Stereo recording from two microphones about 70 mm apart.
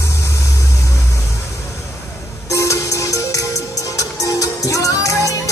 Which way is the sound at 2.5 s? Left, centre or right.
Left.